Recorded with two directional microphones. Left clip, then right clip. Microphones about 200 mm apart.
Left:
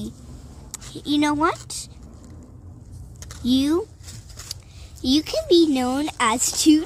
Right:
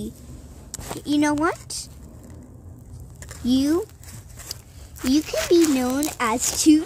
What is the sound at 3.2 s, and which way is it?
Speech, 10° left (ahead or behind).